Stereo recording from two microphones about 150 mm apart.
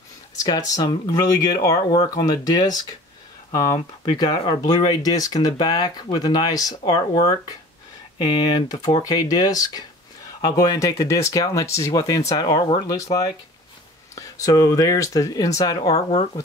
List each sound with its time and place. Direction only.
0.4 s speech: 25° left (ahead or behind)